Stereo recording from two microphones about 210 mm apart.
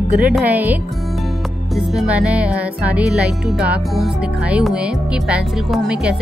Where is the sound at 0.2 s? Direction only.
5° right (ahead or behind).